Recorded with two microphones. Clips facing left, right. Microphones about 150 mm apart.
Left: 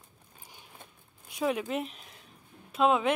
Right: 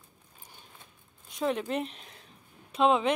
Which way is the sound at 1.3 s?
5° left (ahead or behind).